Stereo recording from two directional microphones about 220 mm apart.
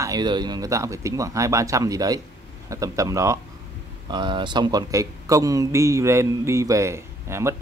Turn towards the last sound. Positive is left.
turn(degrees=-10)  # may be behind; listen again after turning